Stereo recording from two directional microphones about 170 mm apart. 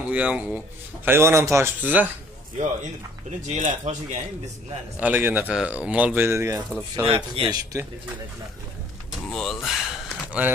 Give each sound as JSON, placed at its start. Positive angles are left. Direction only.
{"t": 0.1, "sound": "speech", "side_deg": -10}
{"t": 2.8, "sound": "speech", "side_deg": -45}
{"t": 5.0, "sound": "speech", "side_deg": -10}
{"t": 7.1, "sound": "a man's voice", "side_deg": -30}
{"t": 9.3, "sound": "a sound", "side_deg": 0}